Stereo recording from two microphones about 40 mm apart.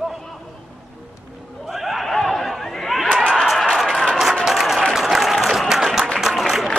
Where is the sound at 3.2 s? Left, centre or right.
Left.